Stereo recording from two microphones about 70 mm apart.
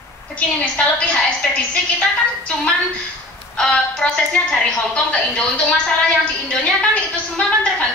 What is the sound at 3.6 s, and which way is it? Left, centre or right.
A woman's voice, centre.